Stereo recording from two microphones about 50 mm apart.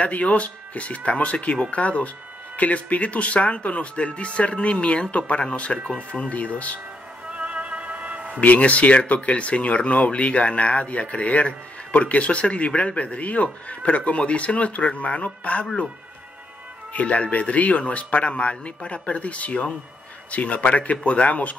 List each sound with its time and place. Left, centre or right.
0.0 s speech: left
7.2 s music: right
8.4 s speech: left
16.9 s speech: left